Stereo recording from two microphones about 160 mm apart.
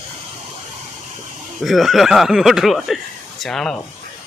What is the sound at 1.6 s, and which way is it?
Speech, centre (ahead or behind).